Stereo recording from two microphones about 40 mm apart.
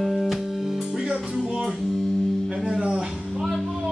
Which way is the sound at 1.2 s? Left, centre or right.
Centre.